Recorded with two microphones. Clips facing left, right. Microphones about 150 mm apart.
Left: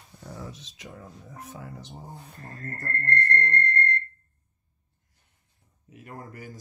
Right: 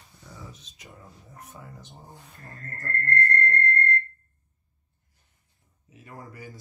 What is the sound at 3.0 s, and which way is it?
Speech, 25° left (ahead or behind).